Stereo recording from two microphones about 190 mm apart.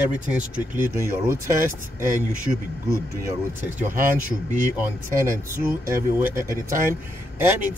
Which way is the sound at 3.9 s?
45° right (ahead or behind).